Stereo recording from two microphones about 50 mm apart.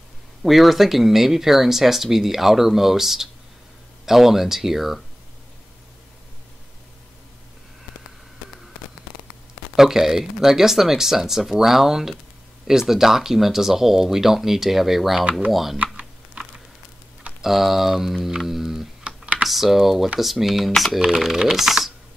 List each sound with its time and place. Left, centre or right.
0.4 s speech: centre
9.8 s speech: centre
16.4 s a sound: centre
17.4 s speech: centre
18.5 s music: centre
19.0 s computer keyboard: right
19.4 s speech: centre